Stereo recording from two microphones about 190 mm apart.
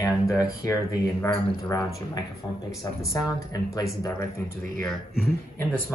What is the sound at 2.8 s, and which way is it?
Speech, 15° left (ahead or behind).